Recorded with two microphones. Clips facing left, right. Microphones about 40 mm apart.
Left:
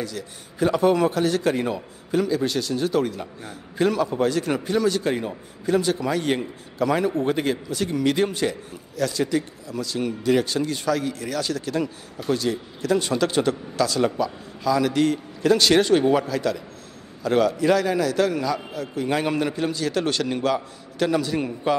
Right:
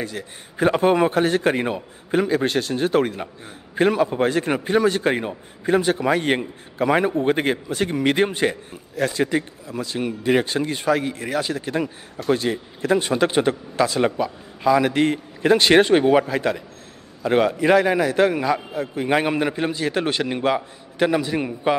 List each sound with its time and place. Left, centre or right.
0.0 s a man's voice: right